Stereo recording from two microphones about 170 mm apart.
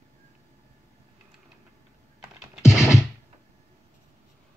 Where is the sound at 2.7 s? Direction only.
15° left (ahead or behind).